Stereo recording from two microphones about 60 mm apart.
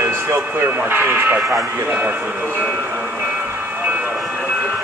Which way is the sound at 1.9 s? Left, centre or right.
Right.